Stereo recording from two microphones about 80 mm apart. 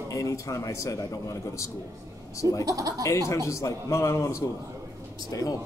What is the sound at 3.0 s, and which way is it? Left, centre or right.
A man's voice, left.